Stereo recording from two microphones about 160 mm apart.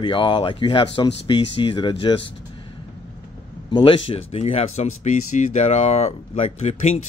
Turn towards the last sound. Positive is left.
turn(degrees=45)  # may be behind; listen again after turning